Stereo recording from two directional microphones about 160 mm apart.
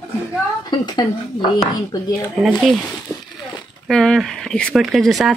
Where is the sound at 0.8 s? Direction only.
25° left (ahead or behind).